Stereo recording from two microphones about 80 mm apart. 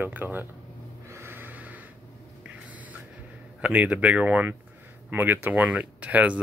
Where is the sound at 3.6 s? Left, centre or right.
Centre.